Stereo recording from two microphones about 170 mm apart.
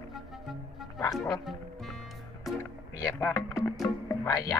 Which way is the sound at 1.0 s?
20° left (ahead or behind).